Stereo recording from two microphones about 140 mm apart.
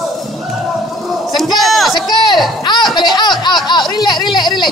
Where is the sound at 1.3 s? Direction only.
Centre (ahead or behind).